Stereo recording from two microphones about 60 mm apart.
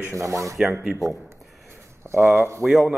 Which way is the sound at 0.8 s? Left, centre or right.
Centre.